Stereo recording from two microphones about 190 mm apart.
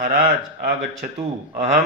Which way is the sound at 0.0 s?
50° right (ahead or behind).